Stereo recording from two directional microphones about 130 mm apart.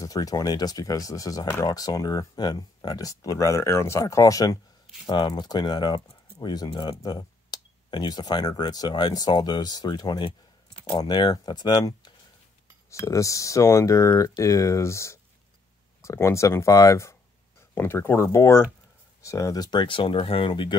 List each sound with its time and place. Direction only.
0.0 s speech: 25° left (ahead or behind)